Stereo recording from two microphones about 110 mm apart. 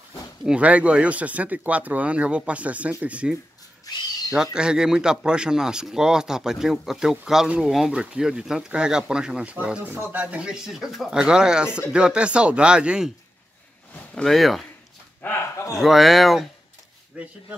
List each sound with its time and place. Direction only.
0.5 s speech: 10° right (ahead or behind)
3.9 s owl: 35° left (ahead or behind)
4.6 s speech: 5° right (ahead or behind)
14.1 s speech: centre (ahead or behind)
15.2 s speech: 25° left (ahead or behind)
15.7 s speech: centre (ahead or behind)
17.1 s speech: 10° right (ahead or behind)